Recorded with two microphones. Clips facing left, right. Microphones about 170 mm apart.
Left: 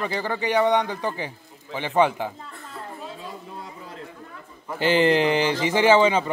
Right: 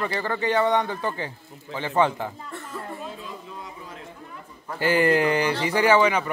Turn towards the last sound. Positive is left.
turn(degrees=25)  # may be behind; listen again after turning